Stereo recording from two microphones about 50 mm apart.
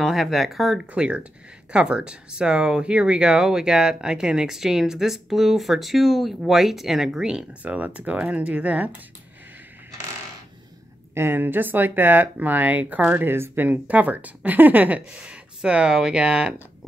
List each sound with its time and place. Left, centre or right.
0.0 s speech: centre
0.9 s speech: centre
7.6 s speech: right
11.1 s speech: right
13.2 s speech: right
13.7 s speech: right
15.1 s speech: right